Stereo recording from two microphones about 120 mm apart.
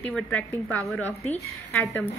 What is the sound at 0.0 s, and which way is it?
A woman's voice, 10° left (ahead or behind).